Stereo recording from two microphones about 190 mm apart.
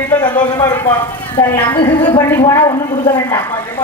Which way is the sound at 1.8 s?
20° left (ahead or behind).